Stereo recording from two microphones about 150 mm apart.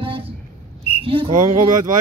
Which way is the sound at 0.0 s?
35° right (ahead or behind).